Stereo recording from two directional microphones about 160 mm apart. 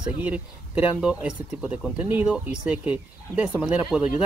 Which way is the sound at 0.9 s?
5° right (ahead or behind).